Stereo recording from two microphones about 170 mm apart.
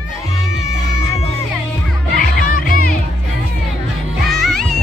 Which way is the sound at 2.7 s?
55° left (ahead or behind).